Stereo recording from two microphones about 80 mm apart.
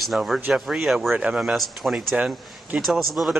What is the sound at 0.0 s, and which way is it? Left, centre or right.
Speech, centre.